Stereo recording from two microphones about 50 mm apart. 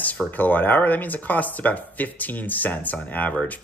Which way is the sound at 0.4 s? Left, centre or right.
Left.